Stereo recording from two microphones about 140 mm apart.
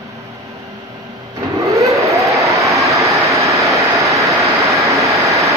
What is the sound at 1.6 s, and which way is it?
Vehicle, 20° right (ahead or behind).